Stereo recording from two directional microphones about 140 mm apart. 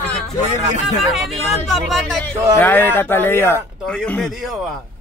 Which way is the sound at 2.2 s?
15° left (ahead or behind).